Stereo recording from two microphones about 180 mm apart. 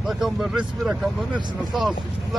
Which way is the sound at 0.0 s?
Centre (ahead or behind).